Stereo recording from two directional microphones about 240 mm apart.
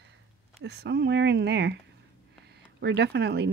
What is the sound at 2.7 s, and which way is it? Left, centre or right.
Speech, right.